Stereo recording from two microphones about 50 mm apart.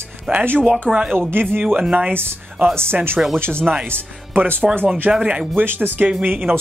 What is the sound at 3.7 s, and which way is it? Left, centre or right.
Speech, centre.